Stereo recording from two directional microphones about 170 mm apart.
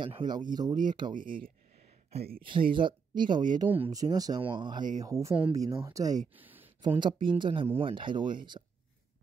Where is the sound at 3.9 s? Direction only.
20° right (ahead or behind).